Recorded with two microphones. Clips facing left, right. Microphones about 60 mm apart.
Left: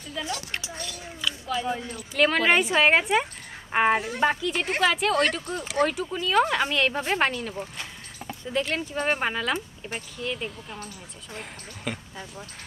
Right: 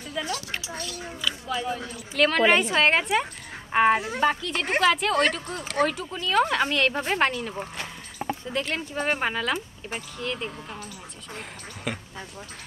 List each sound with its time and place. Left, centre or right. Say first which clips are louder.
0.2 s speech: right 1 dB; centre
7.7 s rowboat: right 2 dB; right
8.5 s speech: left 4 dB; centre